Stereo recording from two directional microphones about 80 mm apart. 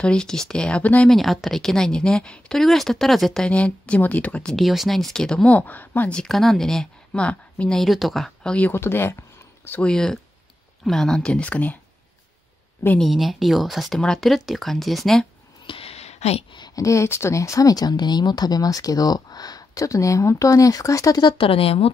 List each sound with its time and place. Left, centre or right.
0.0 s speech: centre
1.1 s a woman's voice: centre
3.4 s speech: centre
4.6 s speech: centre; by 6.1 s left
6.1 s a woman's voice: centre
7.8 s a woman's voice: centre
8.7 s speech: left
9.8 s a woman's voice: centre
13.0 s a woman's voice: centre
15.7 s a sound: left
16.7 s speech: left
21.2 s speech: left